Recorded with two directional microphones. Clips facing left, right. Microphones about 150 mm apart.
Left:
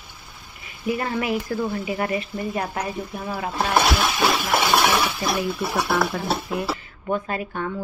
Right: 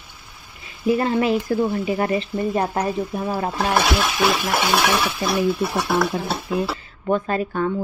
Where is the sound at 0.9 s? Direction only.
30° right (ahead or behind).